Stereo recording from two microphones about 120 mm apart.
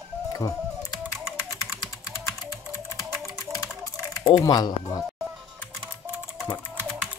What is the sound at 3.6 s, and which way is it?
Typing, 25° left (ahead or behind).